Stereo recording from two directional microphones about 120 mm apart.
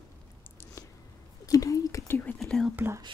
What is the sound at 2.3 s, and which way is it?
Whispering, centre (ahead or behind).